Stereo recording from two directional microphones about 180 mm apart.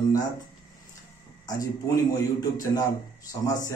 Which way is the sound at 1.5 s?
20° left (ahead or behind).